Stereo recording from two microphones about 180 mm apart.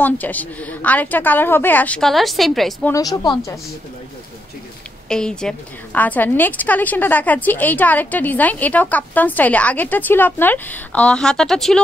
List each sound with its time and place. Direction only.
0.0 s a woman's voice: 10° left (ahead or behind)
2.9 s a woman's voice: 20° left (ahead or behind)
5.0 s a woman's voice: 5° left (ahead or behind)